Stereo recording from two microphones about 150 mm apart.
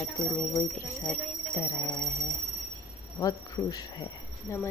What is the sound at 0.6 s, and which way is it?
Speech, 10° left (ahead or behind).